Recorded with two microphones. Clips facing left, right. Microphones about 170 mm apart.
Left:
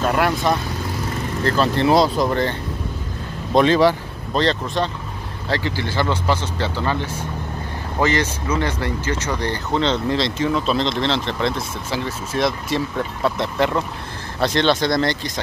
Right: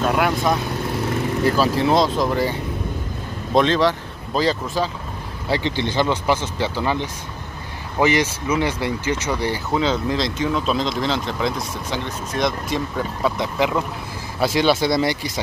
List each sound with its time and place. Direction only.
0.0 s speech: centre (ahead or behind)
3.5 s speech: 5° left (ahead or behind)
4.4 s speech: 5° right (ahead or behind)
5.5 s speech: 20° right (ahead or behind)